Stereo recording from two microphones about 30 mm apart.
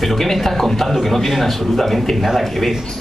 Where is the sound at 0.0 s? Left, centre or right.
Centre.